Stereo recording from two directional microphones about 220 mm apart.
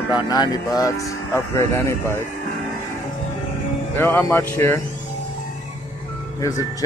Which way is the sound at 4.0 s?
10° left (ahead or behind).